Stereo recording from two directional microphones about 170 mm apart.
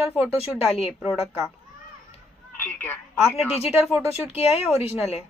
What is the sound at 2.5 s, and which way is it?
Speech, 10° left (ahead or behind).